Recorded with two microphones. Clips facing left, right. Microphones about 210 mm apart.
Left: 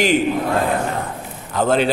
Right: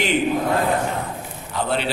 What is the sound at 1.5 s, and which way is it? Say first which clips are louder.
Speech: left 7 dB; 45° left (ahead or behind).